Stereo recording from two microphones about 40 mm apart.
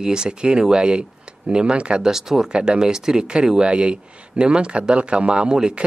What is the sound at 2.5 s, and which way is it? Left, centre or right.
Speech, right.